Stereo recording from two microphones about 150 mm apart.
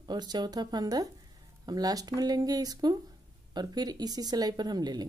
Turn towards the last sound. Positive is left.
turn(degrees=-25)  # may be behind; listen again after turning